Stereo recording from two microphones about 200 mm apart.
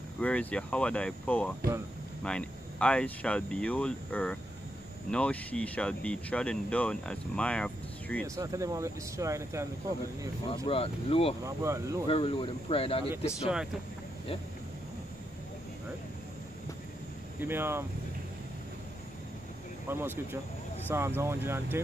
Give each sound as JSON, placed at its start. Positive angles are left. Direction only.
{"t": 0.2, "sound": "speech", "side_deg": 5}
{"t": 8.4, "sound": "speech", "side_deg": -15}
{"t": 10.5, "sound": "speech", "side_deg": 25}
{"t": 11.4, "sound": "speech", "side_deg": -15}
{"t": 12.1, "sound": "speech", "side_deg": 25}
{"t": 17.4, "sound": "speech", "side_deg": -10}
{"t": 19.9, "sound": "speech", "side_deg": -10}